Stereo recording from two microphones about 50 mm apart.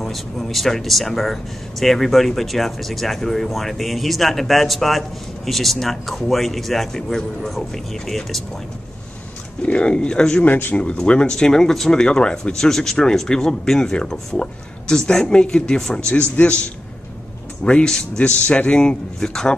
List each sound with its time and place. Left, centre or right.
0.0 s speech: centre
9.6 s speech: left
10.4 s speech: left
11.1 s speech: centre
18.3 s speech: left
18.8 s speech: centre